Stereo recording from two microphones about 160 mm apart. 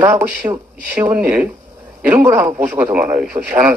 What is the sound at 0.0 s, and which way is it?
A man's voice, 15° right (ahead or behind).